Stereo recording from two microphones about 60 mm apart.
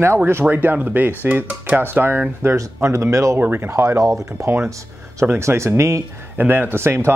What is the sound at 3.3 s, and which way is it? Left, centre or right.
Speech, right.